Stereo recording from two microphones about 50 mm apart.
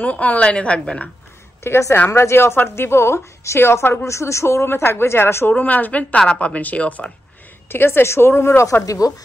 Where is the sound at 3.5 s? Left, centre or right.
Left.